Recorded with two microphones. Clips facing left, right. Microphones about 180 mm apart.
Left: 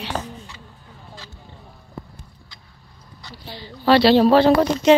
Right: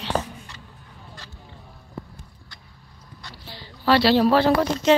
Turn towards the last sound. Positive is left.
turn(degrees=15)  # may be behind; listen again after turning